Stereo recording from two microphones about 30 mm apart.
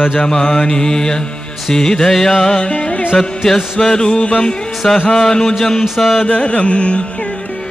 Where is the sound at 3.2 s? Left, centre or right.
Centre.